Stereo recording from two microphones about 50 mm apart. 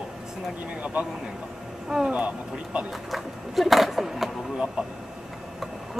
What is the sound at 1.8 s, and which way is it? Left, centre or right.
Speech, centre.